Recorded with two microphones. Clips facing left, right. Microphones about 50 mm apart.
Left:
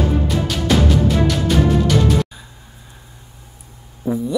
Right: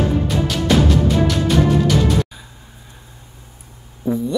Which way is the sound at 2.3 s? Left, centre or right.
Centre.